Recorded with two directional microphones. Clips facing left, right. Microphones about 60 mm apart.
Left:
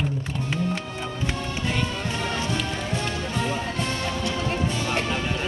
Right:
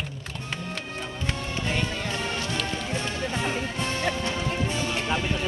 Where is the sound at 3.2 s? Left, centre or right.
Right.